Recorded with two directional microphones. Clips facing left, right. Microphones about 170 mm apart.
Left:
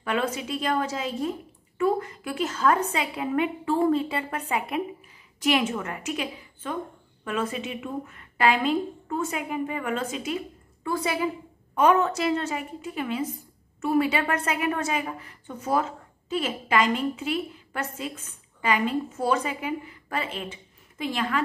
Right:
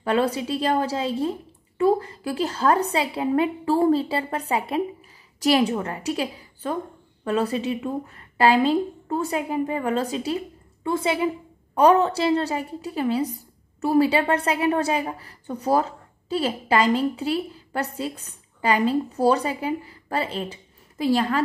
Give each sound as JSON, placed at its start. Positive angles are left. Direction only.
{"t": 0.0, "sound": "a woman's voice", "side_deg": -35}